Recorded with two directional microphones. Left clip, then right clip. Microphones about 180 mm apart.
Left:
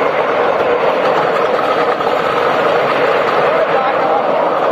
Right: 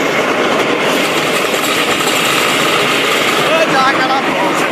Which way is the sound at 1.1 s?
20° left (ahead or behind).